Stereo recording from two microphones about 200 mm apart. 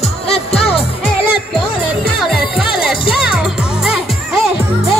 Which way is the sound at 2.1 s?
Centre (ahead or behind).